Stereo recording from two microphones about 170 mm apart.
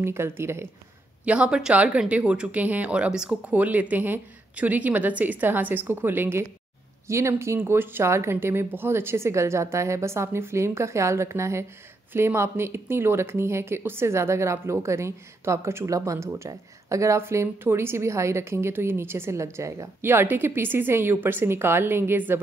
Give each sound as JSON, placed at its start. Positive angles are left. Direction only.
{"t": 0.0, "sound": "speech", "side_deg": -15}